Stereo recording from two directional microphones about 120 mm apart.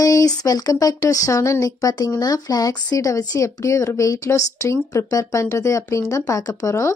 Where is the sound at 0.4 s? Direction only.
30° left (ahead or behind).